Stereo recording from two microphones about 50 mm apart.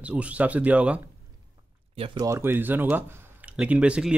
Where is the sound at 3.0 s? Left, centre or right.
Right.